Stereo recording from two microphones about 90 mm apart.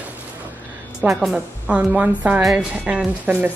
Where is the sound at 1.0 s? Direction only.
20° right (ahead or behind).